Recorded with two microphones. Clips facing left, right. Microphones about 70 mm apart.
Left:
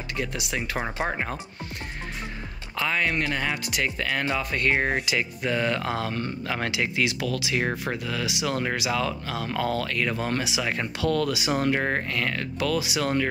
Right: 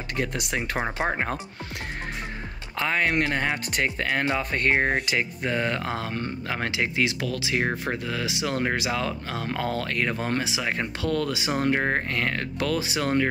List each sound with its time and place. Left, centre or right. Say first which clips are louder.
0.2 s speech: right 2 dB; right
0.6 s speech: right 1 dB; right
2.8 s speech: right 2 dB; right
12.1 s speech: right 1 dB; right